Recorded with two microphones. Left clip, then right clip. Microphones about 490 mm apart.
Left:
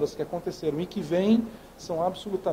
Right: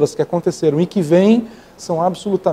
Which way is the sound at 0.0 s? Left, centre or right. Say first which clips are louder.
Right 13 dB; right.